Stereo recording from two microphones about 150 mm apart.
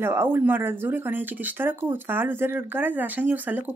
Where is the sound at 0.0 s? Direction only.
15° right (ahead or behind).